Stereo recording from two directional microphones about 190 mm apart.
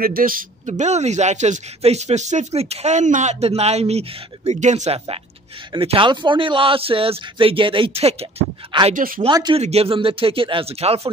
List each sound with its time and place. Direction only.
0.0 s a man's voice: 50° right (ahead or behind); by 8.9 s 30° right (ahead or behind)
8.9 s speech: 45° right (ahead or behind)
9.2 s a man's voice: 25° right (ahead or behind)